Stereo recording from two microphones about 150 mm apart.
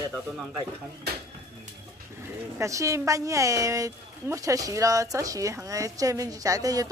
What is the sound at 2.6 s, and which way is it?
A woman's voice, 20° right (ahead or behind).